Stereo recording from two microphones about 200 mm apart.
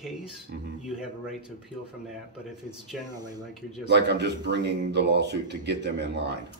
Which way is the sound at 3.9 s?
55° right (ahead or behind).